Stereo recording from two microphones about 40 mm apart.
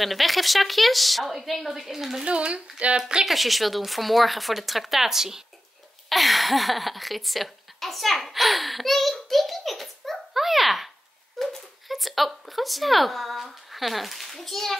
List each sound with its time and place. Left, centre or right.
0.0 s a woman's voice: centre
2.2 s a woman's voice: right
3.3 s a woman's voice: centre
6.0 s speech: centre